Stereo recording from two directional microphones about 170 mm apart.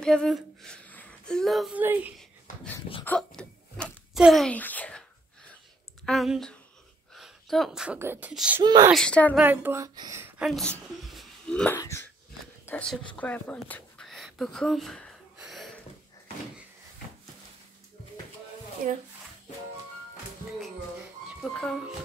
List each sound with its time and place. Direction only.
0.0 s speech: 5° left (ahead or behind)
3.1 s a sound: 5° left (ahead or behind)
6.0 s speech: centre (ahead or behind)
8.9 s speech: 5° left (ahead or behind)
9.4 s a woman's voice: 10° right (ahead or behind)
10.4 s speech: 5° left (ahead or behind)
11.8 s a sound: 15° left (ahead or behind)
12.6 s speech: 5° left (ahead or behind)
13.2 s a sound: 10° left (ahead or behind)
21.4 s speech: centre (ahead or behind)